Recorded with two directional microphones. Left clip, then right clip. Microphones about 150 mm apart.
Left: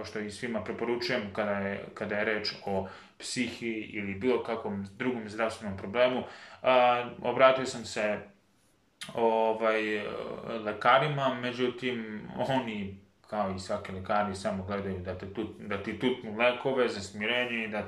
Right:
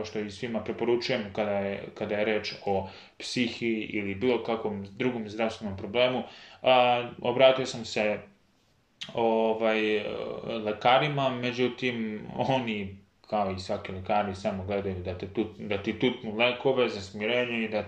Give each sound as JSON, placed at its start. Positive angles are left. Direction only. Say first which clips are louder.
{"t": 0.0, "sound": "speech", "louder": "right 2 dB", "side_deg": -15}